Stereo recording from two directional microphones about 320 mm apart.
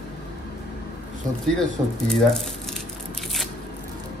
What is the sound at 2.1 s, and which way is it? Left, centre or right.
Speech, centre.